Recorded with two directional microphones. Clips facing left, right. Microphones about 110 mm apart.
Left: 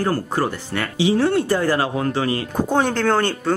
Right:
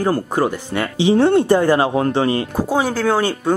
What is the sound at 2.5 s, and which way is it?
Speech, 5° right (ahead or behind).